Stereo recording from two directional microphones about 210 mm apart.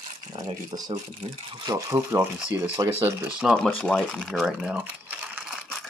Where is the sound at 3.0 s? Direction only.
5° right (ahead or behind).